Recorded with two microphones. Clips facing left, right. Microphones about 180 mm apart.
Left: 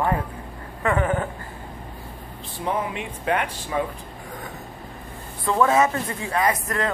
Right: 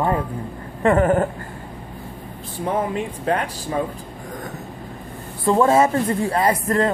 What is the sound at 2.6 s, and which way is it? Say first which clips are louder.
Speech: right 4 dB; 40° right (ahead or behind).